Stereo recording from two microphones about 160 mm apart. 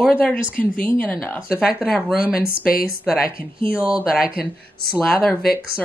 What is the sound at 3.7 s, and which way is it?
Speech, 5° right (ahead or behind).